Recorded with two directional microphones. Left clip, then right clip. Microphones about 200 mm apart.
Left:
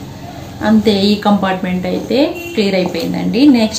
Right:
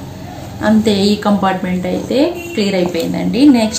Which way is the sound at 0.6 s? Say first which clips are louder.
Even; 10° right (ahead or behind).